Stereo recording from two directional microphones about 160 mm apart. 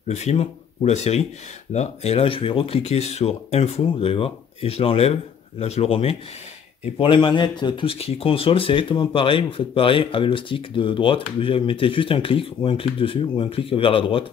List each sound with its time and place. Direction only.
0.1 s speech: 45° left (ahead or behind)